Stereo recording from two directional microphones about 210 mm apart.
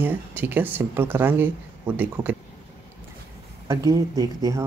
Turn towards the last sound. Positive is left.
turn(degrees=-15)  # may be behind; listen again after turning